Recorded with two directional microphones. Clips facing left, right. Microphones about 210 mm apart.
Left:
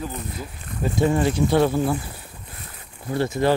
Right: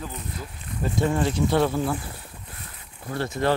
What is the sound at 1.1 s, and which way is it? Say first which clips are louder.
Speech: left 2 dB; 10° left (ahead or behind).